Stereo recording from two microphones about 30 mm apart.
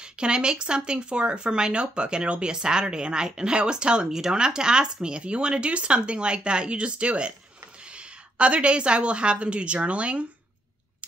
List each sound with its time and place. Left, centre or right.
0.0 s a woman's voice: right